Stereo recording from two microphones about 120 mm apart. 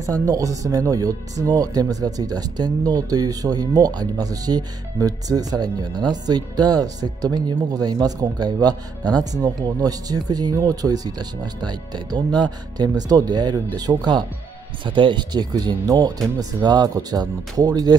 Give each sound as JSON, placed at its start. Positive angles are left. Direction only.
{"t": 0.0, "sound": "speech", "side_deg": -30}